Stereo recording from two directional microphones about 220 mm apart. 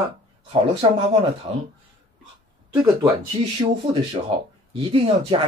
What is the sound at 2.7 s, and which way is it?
Speech, 20° right (ahead or behind).